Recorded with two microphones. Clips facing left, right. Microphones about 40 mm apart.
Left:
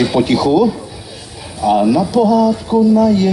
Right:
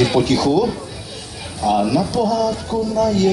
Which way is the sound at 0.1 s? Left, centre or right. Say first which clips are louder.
Left 3 dB; left.